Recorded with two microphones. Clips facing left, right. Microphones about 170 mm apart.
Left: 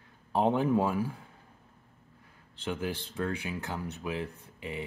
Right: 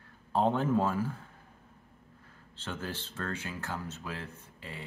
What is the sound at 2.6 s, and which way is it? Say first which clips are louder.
Speech: left 5 dB; 15° left (ahead or behind).